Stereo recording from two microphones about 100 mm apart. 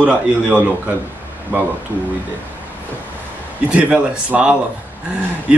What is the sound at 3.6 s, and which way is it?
Speech, 10° right (ahead or behind).